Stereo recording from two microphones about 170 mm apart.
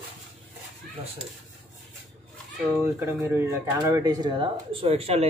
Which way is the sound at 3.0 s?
15° right (ahead or behind).